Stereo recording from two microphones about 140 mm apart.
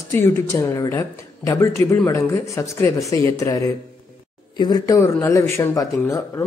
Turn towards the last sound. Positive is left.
turn(degrees=25)  # may be behind; listen again after turning